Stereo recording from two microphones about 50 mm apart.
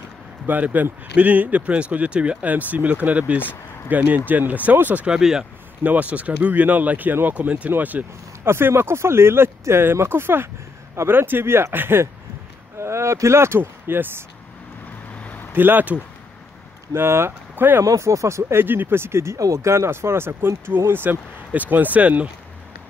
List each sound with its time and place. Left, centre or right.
0.5 s speech: right
2.5 s speech: right
5.0 s speech: centre
5.9 s speech: right
8.5 s speech: right
12.7 s speech: right
13.6 s speech: right
15.5 s speech: right
16.9 s speech: right
17.8 s speech: right
18.6 s speech: right
19.9 s speech: right
21.5 s speech: right